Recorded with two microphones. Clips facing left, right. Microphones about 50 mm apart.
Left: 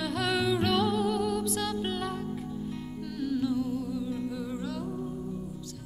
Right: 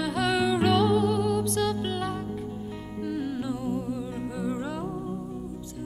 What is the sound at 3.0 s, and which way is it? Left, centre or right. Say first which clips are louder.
Music: right 1 dB; centre.